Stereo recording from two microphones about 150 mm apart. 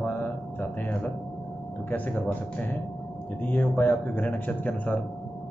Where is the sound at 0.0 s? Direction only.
10° left (ahead or behind).